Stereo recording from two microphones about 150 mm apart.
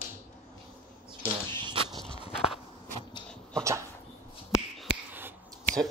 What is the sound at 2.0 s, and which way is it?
Walk, 40° left (ahead or behind).